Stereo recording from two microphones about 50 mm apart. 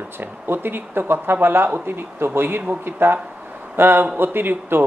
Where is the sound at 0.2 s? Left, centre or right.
Right.